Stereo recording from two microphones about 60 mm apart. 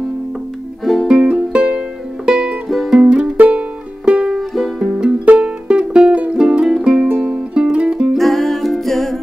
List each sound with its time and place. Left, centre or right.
1.0 s music: centre
4.4 s music: centre
4.7 s music: centre
5.2 s music: right
6.3 s music: centre
8.2 s music: centre